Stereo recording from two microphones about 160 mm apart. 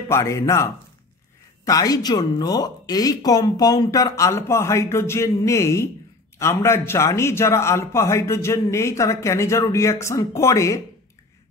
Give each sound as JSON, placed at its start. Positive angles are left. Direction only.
{"t": 0.1, "sound": "a man's voice", "side_deg": 20}